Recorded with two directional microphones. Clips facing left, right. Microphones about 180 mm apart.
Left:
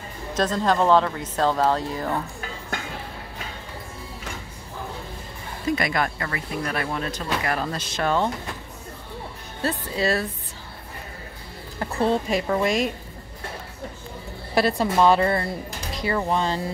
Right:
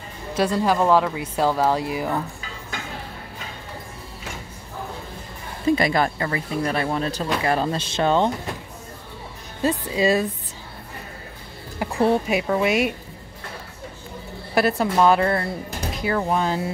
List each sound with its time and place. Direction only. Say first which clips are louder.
0.3 s speech: right 2 dB; 10° right (ahead or behind)
5.7 s speech: right 5 dB; 30° right (ahead or behind)
9.6 s speech: right 4 dB; 15° right (ahead or behind)
11.8 s speech: right 3 dB; 10° right (ahead or behind)
14.5 s a woman's voice: right 1 dB; centre (ahead or behind)